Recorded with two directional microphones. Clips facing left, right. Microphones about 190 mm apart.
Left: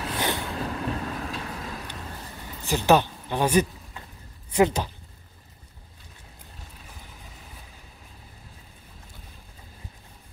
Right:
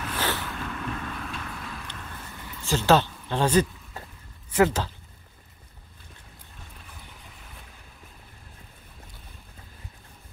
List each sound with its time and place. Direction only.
0.0 s boat: 20° left (ahead or behind)
0.5 s vehicle: 35° left (ahead or behind)
2.6 s speech: 15° left (ahead or behind)
3.9 s a sound: 40° right (ahead or behind)
4.6 s speech: 15° left (ahead or behind)